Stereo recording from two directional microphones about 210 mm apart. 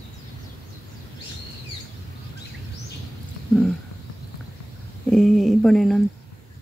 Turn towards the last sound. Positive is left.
turn(degrees=0)  # may be behind; listen again after turning